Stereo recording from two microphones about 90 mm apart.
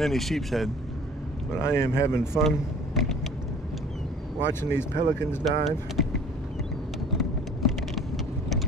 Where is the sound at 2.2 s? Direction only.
5° right (ahead or behind).